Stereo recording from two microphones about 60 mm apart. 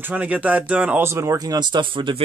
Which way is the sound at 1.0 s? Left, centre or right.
Right.